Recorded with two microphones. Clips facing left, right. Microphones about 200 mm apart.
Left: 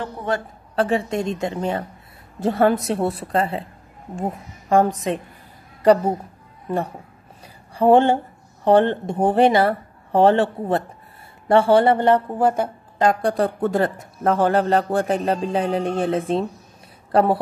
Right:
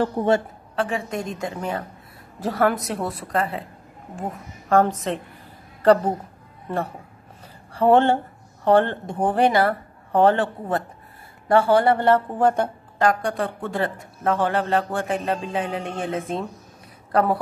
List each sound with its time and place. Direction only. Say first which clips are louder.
0.0 s a woman's voice: right 5 dB; 30° right (ahead or behind)
0.7 s speech: left 5 dB; 35° left (ahead or behind)
4.6 s a woman's voice: left 1 dB; 15° left (ahead or behind)
7.7 s a woman's voice: left 2 dB; 15° left (ahead or behind)
13.0 s speech: left 2 dB; 25° left (ahead or behind)
13.3 s speech: left 6 dB; 40° left (ahead or behind)